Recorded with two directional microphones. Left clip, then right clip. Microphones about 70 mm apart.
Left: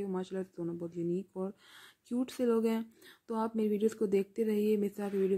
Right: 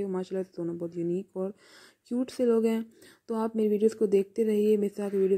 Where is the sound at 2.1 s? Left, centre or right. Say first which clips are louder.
Right 5 dB; right.